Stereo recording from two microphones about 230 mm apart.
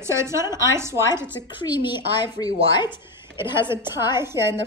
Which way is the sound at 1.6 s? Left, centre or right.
Centre.